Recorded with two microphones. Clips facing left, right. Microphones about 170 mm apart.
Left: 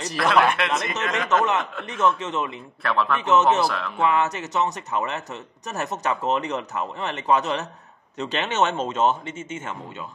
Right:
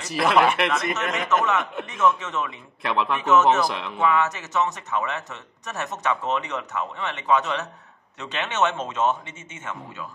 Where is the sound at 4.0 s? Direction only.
30° left (ahead or behind).